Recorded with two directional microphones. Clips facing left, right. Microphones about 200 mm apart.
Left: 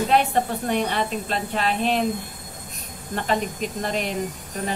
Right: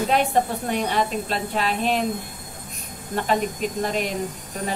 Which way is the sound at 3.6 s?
45° right (ahead or behind).